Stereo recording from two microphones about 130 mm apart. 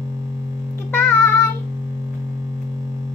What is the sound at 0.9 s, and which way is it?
Music, 15° left (ahead or behind).